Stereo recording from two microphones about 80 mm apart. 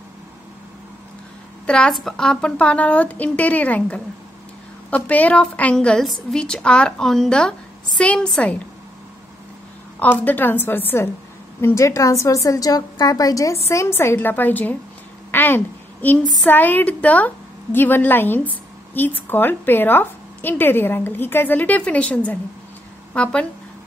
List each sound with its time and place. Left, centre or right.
1.7 s a woman's voice: centre
9.9 s a woman's voice: left
11.6 s a woman's voice: left
15.3 s a sound: left
16.4 s a woman's voice: left